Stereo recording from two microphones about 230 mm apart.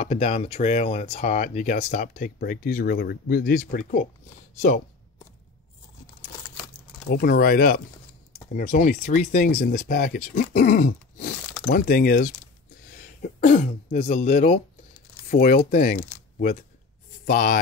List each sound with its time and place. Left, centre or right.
0.0 s speech: left
7.1 s speech: left
17.3 s speech: left